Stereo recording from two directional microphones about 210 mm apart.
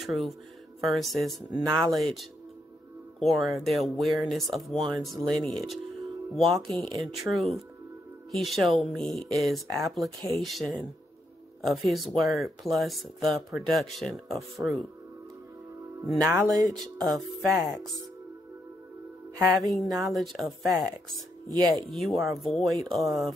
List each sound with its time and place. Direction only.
0.0 s speech: centre (ahead or behind)
17.0 s music: 20° right (ahead or behind)
19.3 s music: 15° right (ahead or behind)
19.6 s speech: centre (ahead or behind)
21.5 s speech: 15° right (ahead or behind)
21.7 s speech: centre (ahead or behind)